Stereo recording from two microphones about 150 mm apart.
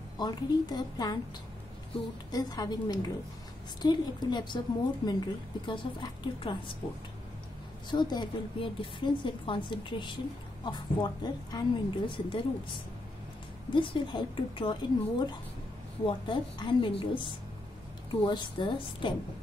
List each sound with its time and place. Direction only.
0.2 s a woman's voice: 30° left (ahead or behind)
7.9 s a woman's voice: 30° left (ahead or behind)
13.7 s a woman's voice: 35° left (ahead or behind)